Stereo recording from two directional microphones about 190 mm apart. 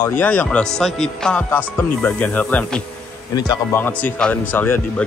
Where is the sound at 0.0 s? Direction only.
10° left (ahead or behind).